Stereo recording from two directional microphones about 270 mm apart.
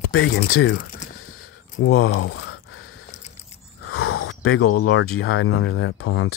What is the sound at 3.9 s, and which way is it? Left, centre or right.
Speech, left.